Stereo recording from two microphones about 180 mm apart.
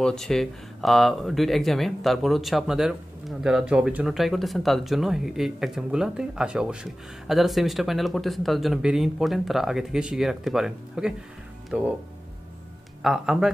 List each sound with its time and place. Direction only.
0.0 s speech: centre (ahead or behind)
13.0 s speech: centre (ahead or behind)